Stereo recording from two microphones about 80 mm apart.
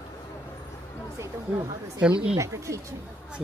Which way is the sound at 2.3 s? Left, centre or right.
Right.